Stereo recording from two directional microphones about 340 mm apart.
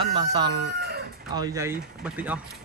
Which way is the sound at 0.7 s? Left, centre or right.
Right.